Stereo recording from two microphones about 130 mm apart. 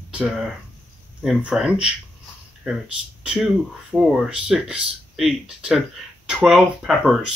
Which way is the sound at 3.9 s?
5° right (ahead or behind).